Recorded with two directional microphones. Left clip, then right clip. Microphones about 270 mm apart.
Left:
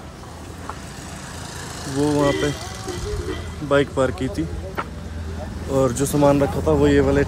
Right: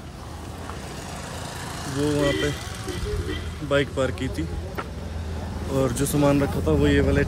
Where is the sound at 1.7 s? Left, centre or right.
Right.